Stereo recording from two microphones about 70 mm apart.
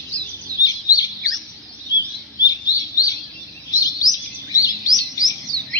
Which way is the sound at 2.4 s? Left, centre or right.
Left.